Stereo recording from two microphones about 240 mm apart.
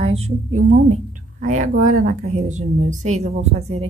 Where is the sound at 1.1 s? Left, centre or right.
Right.